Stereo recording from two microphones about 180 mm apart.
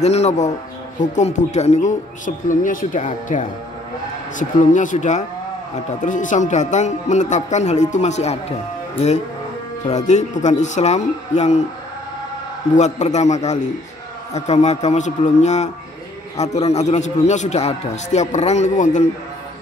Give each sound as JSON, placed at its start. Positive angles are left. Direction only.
{"t": 0.0, "sound": "speech", "side_deg": 35}
{"t": 9.8, "sound": "speech", "side_deg": 40}
{"t": 12.7, "sound": "speech", "side_deg": 40}